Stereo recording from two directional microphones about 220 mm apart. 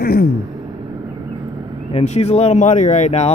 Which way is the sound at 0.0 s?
45° left (ahead or behind).